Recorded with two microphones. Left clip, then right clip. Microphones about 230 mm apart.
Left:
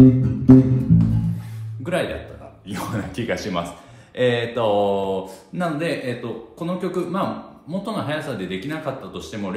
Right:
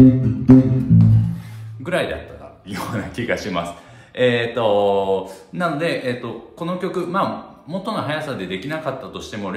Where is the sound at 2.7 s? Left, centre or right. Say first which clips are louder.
Right 2 dB; centre.